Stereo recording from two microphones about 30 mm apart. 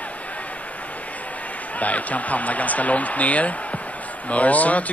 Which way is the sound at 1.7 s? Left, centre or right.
Left.